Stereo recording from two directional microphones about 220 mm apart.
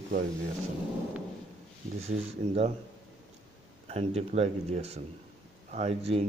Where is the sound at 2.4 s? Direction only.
25° right (ahead or behind).